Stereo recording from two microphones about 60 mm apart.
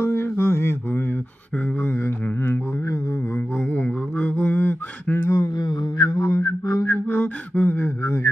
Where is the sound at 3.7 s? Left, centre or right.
Left.